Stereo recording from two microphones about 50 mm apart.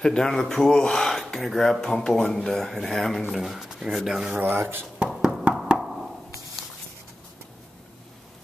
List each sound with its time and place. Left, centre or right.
0.0 s speech: centre
4.4 s speech: right
5.5 s knock: right
5.8 s a sound: centre